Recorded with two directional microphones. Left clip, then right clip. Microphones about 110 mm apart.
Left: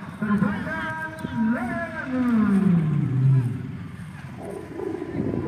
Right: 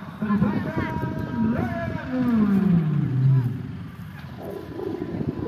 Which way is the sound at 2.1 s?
50° right (ahead or behind).